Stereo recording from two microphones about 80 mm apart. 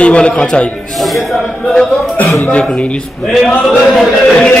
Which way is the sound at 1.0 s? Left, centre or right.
Centre.